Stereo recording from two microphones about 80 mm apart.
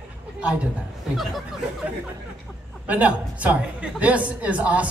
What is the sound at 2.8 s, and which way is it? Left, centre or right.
Speech, centre.